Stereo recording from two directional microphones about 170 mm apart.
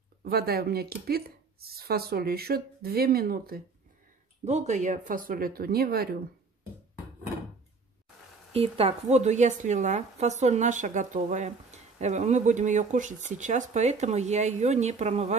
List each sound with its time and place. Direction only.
0.2 s speech: 65° right (ahead or behind)
4.5 s speech: 45° right (ahead or behind); by 6.0 s 65° right (ahead or behind)
8.5 s a woman's voice: 35° right (ahead or behind)